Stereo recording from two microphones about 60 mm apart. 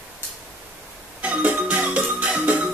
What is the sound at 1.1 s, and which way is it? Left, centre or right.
Music, right.